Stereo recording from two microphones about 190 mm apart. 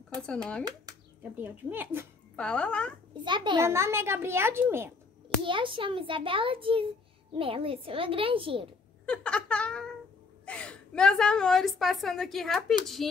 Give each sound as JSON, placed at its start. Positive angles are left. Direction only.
{"t": 0.1, "sound": "speech", "side_deg": 5}
{"t": 0.7, "sound": "a sound", "side_deg": -20}
{"t": 1.4, "sound": "a child's voice", "side_deg": -10}
{"t": 2.3, "sound": "a woman's voice", "side_deg": 5}
{"t": 3.2, "sound": "a child's voice", "side_deg": -25}
{"t": 3.5, "sound": "a child's voice", "side_deg": -15}
{"t": 5.4, "sound": "a child's voice", "side_deg": -25}
{"t": 9.0, "sound": "a sound", "side_deg": 5}
{"t": 10.4, "sound": "a woman's voice", "side_deg": 5}